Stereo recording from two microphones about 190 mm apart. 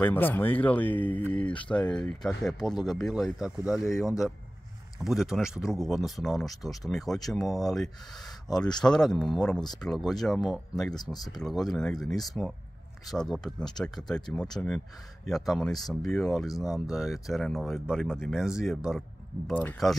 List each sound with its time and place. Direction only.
0.0 s speech: 10° left (ahead or behind)
4.9 s speech: centre (ahead or behind)
8.5 s speech: 20° left (ahead or behind)
8.8 s speech: 5° left (ahead or behind)